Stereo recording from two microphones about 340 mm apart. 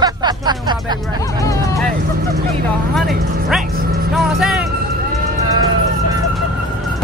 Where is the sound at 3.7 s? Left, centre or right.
Right.